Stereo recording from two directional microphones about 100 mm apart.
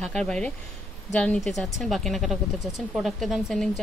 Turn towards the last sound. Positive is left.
turn(degrees=0)  # may be behind; listen again after turning